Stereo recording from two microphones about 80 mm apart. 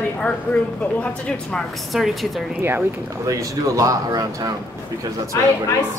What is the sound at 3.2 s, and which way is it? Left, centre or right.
A man's voice, right.